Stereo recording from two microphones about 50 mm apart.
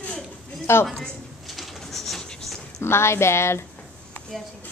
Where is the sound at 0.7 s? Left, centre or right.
Left.